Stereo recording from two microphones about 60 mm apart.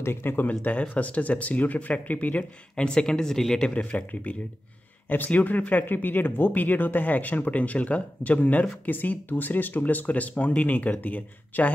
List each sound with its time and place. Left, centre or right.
0.0 s speech: left
0.5 s speech: left; by 3.6 s centre
3.6 s speech: centre